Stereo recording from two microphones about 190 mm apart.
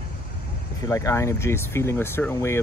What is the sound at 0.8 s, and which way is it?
Speech, 15° left (ahead or behind).